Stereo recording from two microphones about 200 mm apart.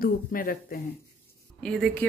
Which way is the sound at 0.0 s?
45° left (ahead or behind).